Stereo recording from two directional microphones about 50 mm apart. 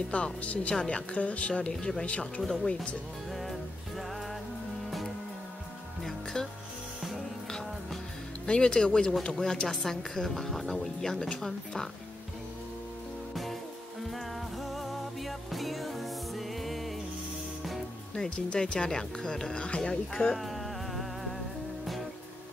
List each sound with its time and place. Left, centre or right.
0.1 s a woman's voice: left
1.6 s a woman's voice: centre
3.3 s music: centre
6.0 s music: centre
7.0 s music: centre
7.4 s music: centre
8.5 s a woman's voice: centre
13.3 s music: centre
18.1 s speech: centre
20.3 s music: centre